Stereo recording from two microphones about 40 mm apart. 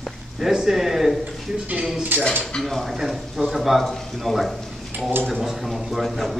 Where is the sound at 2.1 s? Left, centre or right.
Right.